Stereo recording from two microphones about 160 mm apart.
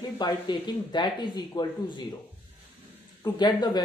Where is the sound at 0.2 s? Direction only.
25° left (ahead or behind).